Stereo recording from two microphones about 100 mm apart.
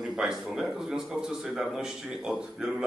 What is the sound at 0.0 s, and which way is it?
Speech, 5° right (ahead or behind).